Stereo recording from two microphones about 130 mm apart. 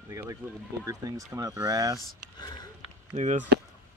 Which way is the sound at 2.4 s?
30° left (ahead or behind).